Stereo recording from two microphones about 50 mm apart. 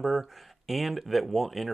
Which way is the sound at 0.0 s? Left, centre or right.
Centre.